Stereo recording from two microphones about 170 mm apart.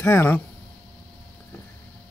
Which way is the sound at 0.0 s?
15° left (ahead or behind).